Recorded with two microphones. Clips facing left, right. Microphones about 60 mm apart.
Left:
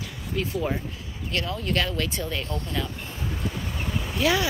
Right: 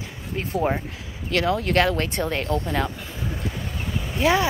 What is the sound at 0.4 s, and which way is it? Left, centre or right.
Speech, right.